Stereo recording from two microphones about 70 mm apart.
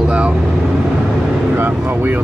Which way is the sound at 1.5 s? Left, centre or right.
Right.